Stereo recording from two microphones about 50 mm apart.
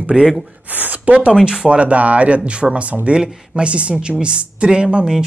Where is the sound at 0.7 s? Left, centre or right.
Right.